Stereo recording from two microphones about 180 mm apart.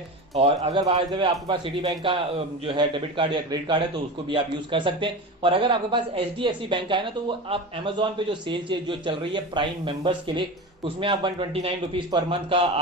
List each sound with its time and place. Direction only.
0.3 s a man's voice: 35° right (ahead or behind)